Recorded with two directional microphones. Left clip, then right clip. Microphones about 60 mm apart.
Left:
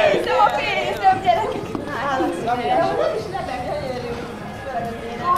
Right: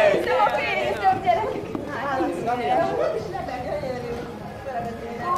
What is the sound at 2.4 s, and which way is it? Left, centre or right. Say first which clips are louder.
Speech: left 3 dB; centre.